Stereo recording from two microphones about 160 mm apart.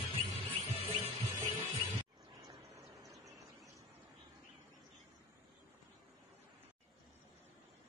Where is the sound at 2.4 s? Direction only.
20° right (ahead or behind).